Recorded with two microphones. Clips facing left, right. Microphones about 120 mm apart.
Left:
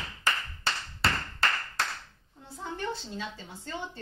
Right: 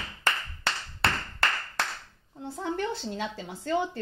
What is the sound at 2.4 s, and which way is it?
A woman's voice, 80° right.